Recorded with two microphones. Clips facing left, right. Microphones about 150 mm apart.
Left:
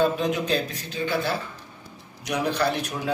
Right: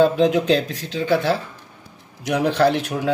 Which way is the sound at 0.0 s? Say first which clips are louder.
Right 7 dB; 85° right.